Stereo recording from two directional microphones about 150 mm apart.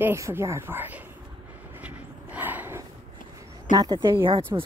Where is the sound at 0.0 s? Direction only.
15° right (ahead or behind).